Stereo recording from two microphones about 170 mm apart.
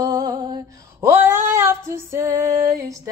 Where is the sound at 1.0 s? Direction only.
10° right (ahead or behind).